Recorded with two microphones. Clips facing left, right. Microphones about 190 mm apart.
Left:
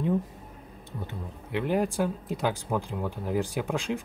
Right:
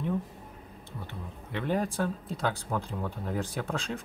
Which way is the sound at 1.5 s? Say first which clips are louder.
Left 3 dB; 10° left (ahead or behind).